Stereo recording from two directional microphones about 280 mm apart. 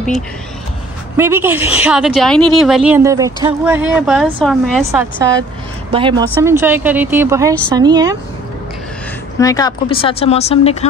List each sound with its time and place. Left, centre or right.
1.1 s a woman's voice: centre
5.9 s speech: centre
9.4 s speech: centre